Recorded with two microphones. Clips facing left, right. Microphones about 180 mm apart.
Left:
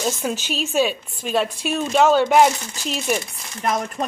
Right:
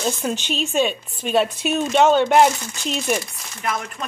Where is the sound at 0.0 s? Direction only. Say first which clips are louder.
Even; 5° left (ahead or behind).